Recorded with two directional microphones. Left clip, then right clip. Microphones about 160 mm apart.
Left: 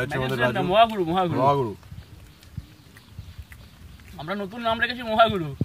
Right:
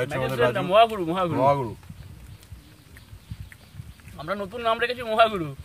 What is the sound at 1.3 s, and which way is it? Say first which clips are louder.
Speech: right 1 dB; 5° right (ahead or behind).